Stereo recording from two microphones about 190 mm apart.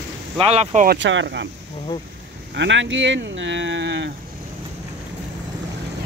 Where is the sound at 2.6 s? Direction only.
70° right (ahead or behind).